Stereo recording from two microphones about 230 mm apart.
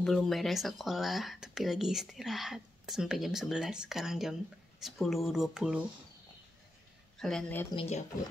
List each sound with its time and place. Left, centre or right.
0.0 s speech: centre
7.2 s speech: centre
7.7 s speech: left